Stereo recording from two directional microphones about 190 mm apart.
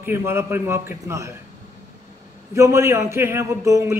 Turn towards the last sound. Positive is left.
turn(degrees=-15)  # may be behind; listen again after turning